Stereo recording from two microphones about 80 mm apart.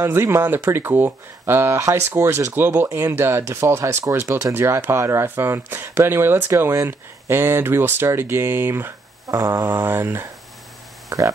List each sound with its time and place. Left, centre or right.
0.0 s speech: right
9.3 s a sound: right
9.7 s speech: right
11.1 s speech: right